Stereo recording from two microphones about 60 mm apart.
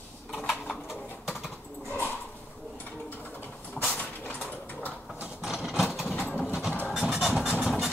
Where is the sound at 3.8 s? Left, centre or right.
Left.